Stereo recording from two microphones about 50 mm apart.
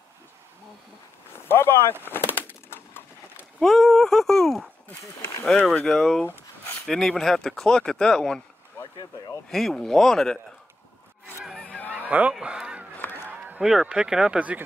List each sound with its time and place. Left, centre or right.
1.5 s speech: left
2.0 s a sound: left
3.6 s speech: centre
5.9 s speech: centre
9.5 s speech: centre
11.9 s goose: right
12.4 s honk: centre
13.3 s a sound: right
13.6 s speech: centre